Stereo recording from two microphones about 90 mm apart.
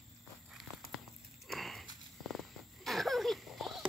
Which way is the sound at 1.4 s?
Centre (ahead or behind).